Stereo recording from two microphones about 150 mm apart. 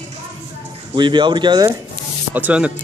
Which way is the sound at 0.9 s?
30° right (ahead or behind).